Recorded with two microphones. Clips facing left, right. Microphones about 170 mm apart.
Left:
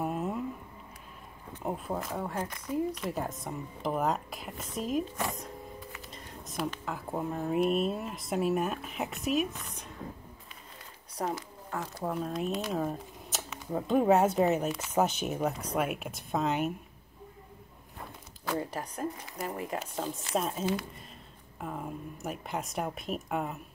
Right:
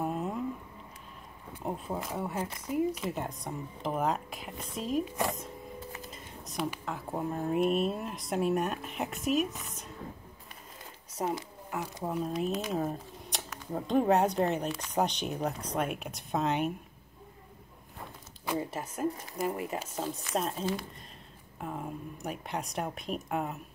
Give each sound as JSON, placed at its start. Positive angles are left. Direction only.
{"t": 0.0, "sound": "a sound", "side_deg": 5}
{"t": 1.6, "sound": "speech", "side_deg": 0}
{"t": 5.0, "sound": "speech", "side_deg": -15}
{"t": 6.1, "sound": "computer keyboard", "side_deg": 0}
{"t": 6.9, "sound": "speech", "side_deg": 0}
{"t": 11.3, "sound": "speech", "side_deg": -15}
{"t": 12.4, "sound": "speech", "side_deg": 0}
{"t": 18.6, "sound": "speech", "side_deg": -5}